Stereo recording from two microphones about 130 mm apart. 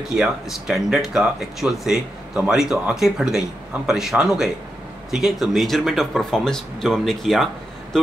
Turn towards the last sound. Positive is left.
turn(degrees=0)  # may be behind; listen again after turning